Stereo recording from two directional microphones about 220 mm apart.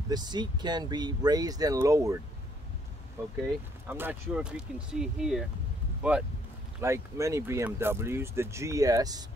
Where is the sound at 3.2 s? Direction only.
10° right (ahead or behind).